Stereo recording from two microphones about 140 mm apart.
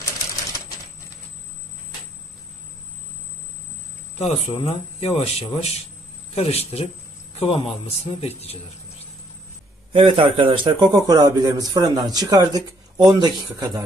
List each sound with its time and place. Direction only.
4.2 s a man's voice: 50° left (ahead or behind)
9.9 s a man's voice: 40° right (ahead or behind)